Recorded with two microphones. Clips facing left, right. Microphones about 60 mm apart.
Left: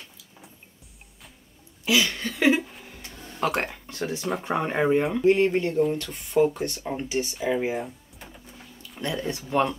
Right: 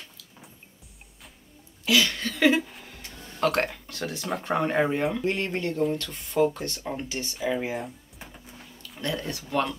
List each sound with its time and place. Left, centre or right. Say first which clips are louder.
1.9 s a sound: even; centre
4.4 s speech: right 2 dB; centre
6.8 s speech: left 2 dB; centre
7.1 s speech: left 4 dB; centre
9.0 s speech: left 2 dB; centre